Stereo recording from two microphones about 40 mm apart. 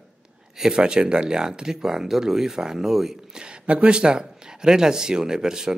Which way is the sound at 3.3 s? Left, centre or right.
Right.